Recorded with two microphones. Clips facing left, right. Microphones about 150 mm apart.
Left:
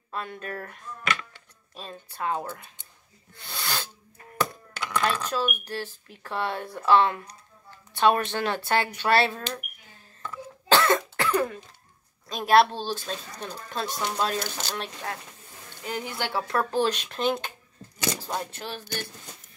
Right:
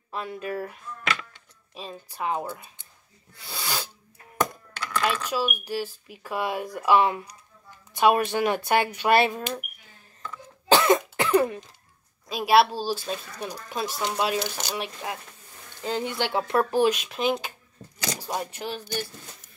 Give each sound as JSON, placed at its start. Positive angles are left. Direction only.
{"t": 0.1, "sound": "speech", "side_deg": -10}
{"t": 1.8, "sound": "speech", "side_deg": -10}
{"t": 3.4, "sound": "sneeze", "side_deg": -10}
{"t": 5.0, "sound": "speech", "side_deg": -10}
{"t": 10.7, "sound": "cough", "side_deg": -15}
{"t": 12.3, "sound": "speech", "side_deg": -5}
{"t": 15.8, "sound": "speech", "side_deg": -30}